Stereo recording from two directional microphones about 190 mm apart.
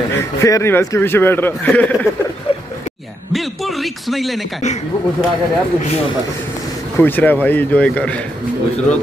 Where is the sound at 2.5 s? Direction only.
30° left (ahead or behind).